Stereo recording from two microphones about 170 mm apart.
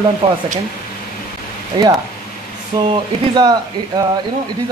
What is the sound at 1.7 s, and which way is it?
Speech, 30° right (ahead or behind).